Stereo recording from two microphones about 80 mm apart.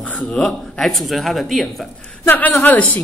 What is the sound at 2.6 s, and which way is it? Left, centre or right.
Speech, centre.